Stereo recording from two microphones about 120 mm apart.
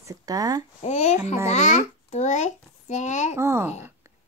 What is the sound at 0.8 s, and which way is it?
A child's voice, 70° left (ahead or behind).